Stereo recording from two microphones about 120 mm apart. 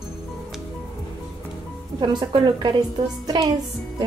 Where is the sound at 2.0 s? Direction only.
40° right (ahead or behind).